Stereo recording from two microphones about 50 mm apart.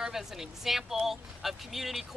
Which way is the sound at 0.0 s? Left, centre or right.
Centre.